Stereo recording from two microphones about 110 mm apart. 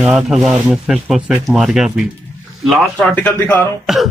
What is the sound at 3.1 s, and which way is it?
Speech, 15° left (ahead or behind).